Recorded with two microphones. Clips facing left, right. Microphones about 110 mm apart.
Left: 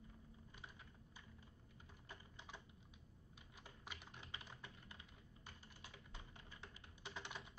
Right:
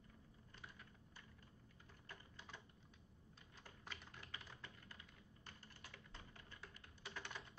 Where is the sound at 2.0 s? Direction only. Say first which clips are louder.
Even; 15° left (ahead or behind).